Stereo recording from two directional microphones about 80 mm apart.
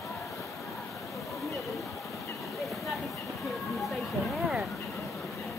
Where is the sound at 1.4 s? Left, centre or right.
Centre.